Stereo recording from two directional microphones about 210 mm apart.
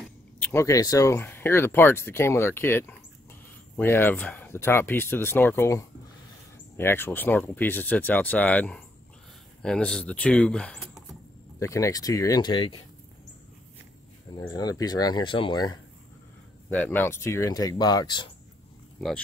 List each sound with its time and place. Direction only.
0.4 s speech: 10° left (ahead or behind)
11.6 s speech: 15° left (ahead or behind)
14.5 s speech: 20° left (ahead or behind)
16.7 s speech: 10° left (ahead or behind)
18.9 s speech: centre (ahead or behind)